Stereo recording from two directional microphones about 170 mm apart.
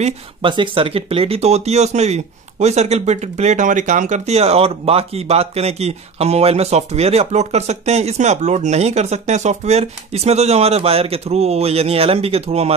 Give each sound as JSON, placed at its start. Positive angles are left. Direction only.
{"t": 0.0, "sound": "speech", "side_deg": -30}